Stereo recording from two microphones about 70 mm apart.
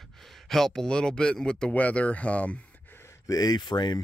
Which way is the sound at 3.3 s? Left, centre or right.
Left.